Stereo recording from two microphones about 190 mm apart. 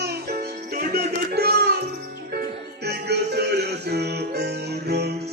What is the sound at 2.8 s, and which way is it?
Music, 60° right (ahead or behind).